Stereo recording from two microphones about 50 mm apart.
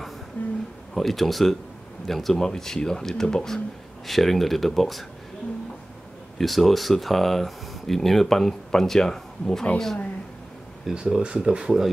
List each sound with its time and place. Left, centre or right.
0.4 s a sound: left
0.9 s speech: centre
4.1 s speech: centre
6.3 s speech: centre
10.9 s speech: centre